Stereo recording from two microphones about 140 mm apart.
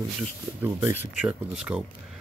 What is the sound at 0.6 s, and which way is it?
Speech, 20° right (ahead or behind).